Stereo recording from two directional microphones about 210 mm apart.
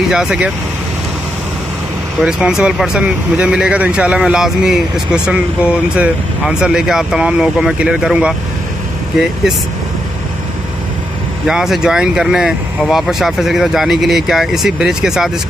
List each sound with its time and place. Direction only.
0.1 s speech: 5° right (ahead or behind)
2.2 s speech: 5° right (ahead or behind)
11.4 s speech: centre (ahead or behind)